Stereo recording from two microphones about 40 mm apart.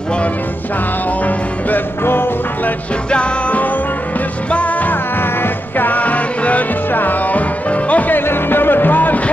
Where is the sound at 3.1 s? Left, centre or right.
Left.